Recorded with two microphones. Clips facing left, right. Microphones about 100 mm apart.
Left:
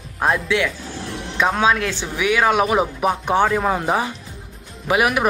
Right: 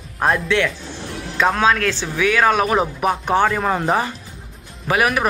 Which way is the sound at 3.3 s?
15° left (ahead or behind).